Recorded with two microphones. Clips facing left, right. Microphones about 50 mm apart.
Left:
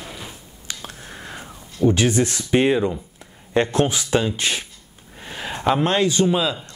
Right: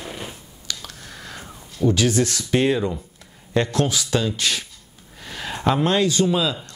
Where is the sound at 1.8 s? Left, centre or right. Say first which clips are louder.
Left 1 dB; left.